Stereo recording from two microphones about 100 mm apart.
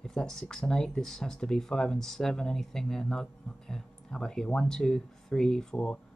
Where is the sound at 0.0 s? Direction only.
5° left (ahead or behind).